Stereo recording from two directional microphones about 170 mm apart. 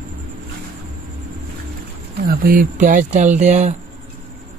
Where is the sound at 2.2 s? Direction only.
55° right (ahead or behind).